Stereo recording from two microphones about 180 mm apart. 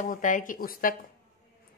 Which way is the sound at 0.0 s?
45° left (ahead or behind).